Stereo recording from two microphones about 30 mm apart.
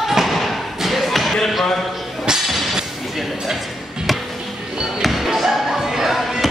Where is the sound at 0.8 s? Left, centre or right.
Centre.